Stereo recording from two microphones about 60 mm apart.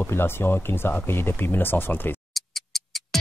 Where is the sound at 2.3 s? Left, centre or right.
Centre.